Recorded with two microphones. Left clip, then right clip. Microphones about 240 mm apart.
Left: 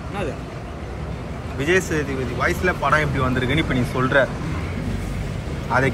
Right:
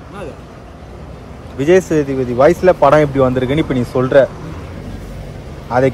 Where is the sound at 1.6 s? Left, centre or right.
Right.